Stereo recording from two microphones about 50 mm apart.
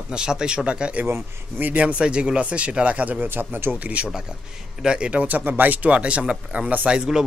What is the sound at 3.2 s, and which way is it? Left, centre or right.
Speech, right.